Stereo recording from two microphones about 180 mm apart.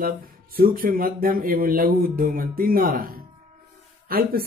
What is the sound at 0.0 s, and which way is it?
A man's voice, 55° right (ahead or behind).